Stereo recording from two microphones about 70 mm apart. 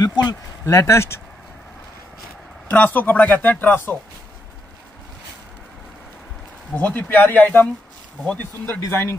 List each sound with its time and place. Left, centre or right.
0.0 s speech: left
0.7 s speech: left
2.7 s speech: left
6.7 s speech: left